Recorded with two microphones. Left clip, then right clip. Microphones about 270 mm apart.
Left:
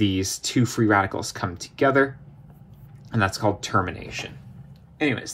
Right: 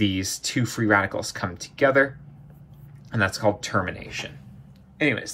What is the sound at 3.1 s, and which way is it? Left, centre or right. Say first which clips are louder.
Speech: right 1 dB; left.